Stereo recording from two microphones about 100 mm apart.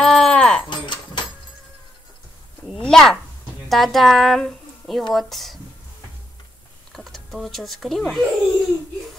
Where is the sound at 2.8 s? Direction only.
5° left (ahead or behind).